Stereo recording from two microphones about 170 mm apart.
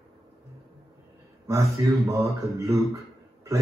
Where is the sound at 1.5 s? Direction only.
15° right (ahead or behind).